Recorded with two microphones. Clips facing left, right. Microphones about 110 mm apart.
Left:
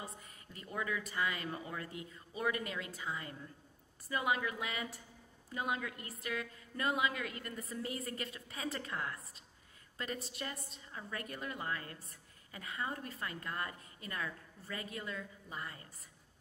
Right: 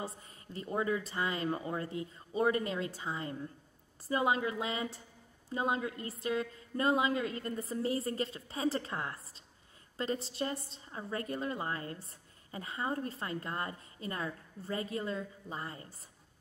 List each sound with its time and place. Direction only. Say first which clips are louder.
0.0 s a woman's voice: right 6 dB; 30° right (ahead or behind)